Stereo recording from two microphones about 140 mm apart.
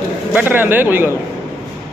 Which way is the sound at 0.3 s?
10° right (ahead or behind).